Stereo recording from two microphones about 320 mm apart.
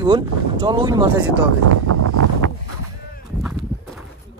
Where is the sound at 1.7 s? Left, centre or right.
Right.